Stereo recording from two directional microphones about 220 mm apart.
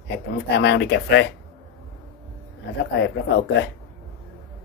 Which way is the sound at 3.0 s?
50° left (ahead or behind).